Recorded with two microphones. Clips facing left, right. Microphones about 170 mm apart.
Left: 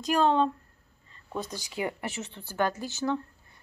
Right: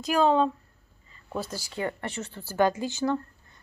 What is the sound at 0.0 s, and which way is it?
Speech, 5° right (ahead or behind).